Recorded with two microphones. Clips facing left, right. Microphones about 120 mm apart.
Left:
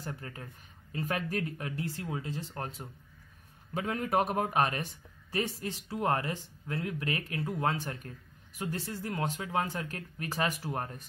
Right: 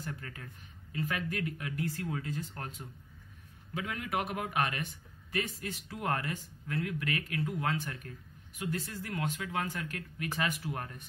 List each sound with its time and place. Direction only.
0.0 s speech: 30° left (ahead or behind)